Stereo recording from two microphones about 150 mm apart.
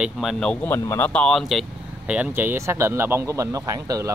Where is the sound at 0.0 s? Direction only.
Centre (ahead or behind).